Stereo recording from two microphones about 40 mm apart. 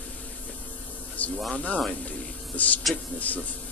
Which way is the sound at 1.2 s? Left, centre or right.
Left.